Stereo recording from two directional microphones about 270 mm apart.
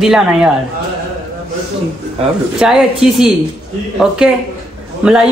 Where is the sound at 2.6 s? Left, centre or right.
Centre.